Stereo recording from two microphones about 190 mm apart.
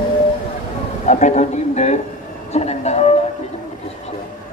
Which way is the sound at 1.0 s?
40° left (ahead or behind).